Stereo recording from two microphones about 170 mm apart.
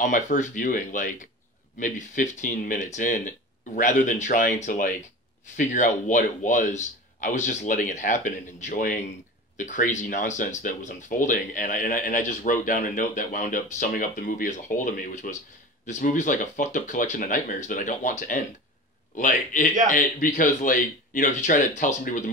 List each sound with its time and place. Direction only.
0.0 s speech: 50° left (ahead or behind)